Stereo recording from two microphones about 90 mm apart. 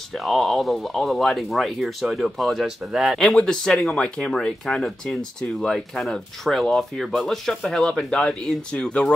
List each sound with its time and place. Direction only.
0.1 s speech: centre (ahead or behind)